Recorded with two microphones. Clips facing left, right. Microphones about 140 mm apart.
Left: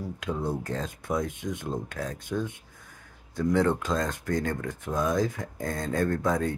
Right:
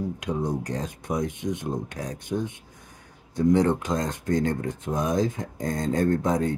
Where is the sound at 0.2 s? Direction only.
15° right (ahead or behind).